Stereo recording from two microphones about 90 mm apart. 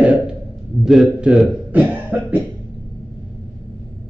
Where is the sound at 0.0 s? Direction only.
15° right (ahead or behind).